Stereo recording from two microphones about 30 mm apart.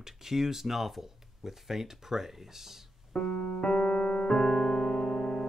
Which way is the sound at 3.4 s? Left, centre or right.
Left.